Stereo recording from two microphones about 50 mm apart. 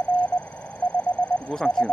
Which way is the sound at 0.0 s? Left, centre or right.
Left.